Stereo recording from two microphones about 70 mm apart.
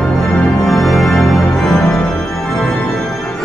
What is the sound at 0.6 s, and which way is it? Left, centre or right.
Music, centre.